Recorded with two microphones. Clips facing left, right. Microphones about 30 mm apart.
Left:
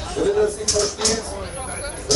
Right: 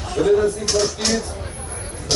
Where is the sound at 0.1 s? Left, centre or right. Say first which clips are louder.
Right 2 dB; centre.